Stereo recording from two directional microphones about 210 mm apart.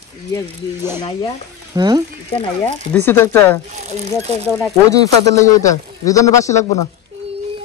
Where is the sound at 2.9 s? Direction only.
10° left (ahead or behind).